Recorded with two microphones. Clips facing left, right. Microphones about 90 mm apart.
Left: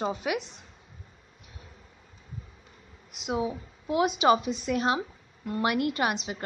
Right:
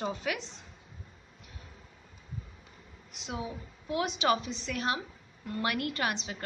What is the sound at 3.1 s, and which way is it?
A woman's voice, 20° left (ahead or behind).